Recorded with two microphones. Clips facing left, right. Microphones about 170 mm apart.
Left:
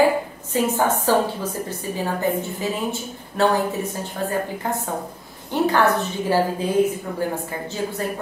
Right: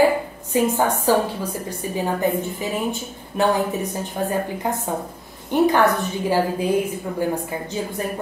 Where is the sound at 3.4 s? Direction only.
15° right (ahead or behind).